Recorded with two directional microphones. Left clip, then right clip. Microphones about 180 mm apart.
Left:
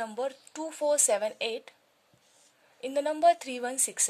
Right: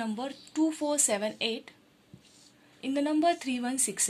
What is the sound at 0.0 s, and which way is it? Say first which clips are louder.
Speech: left 3 dB; 55° left (ahead or behind).